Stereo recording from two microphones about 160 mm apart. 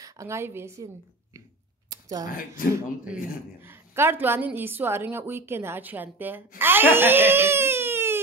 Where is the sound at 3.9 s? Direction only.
15° right (ahead or behind).